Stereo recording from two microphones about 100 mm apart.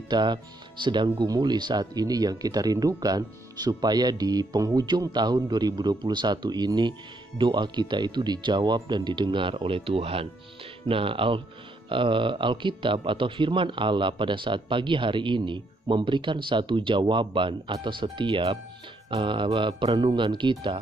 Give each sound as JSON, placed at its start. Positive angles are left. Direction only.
{"t": 0.1, "sound": "speech", "side_deg": -50}
{"t": 10.9, "sound": "a man's voice", "side_deg": -60}